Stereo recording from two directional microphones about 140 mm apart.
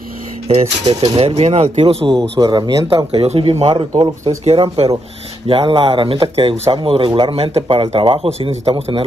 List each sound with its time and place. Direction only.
0.5 s speech: 45° right (ahead or behind)
2.4 s speech: 30° right (ahead or behind)
3.1 s speech: 45° right (ahead or behind)
3.9 s speech: 25° right (ahead or behind)
4.5 s speech: 45° right (ahead or behind)